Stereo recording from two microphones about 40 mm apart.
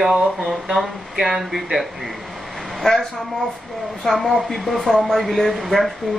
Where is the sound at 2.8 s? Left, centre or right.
Centre.